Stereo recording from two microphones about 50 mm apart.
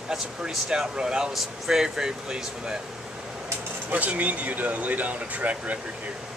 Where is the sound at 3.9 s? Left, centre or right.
Right.